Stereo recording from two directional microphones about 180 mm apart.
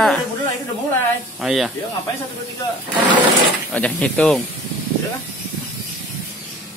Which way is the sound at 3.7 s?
10° left (ahead or behind).